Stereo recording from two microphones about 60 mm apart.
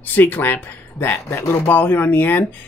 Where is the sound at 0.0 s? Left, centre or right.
Left.